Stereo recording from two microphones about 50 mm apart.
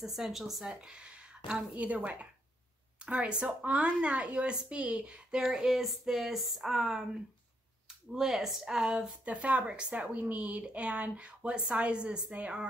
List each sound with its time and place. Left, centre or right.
0.0 s speech: centre
0.7 s a sound: centre
1.8 s speech: right
5.6 s speech: centre
8.1 s speech: centre
9.2 s speech: right